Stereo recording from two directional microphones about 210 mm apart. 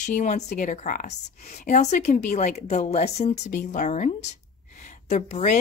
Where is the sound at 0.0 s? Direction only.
35° left (ahead or behind).